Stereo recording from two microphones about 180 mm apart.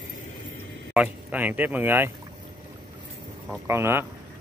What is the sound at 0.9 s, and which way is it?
Speech, 5° right (ahead or behind).